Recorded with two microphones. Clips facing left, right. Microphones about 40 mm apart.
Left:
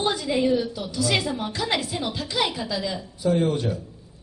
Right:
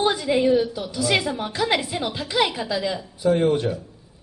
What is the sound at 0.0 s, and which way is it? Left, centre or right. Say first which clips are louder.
A woman's voice: right 3 dB; centre.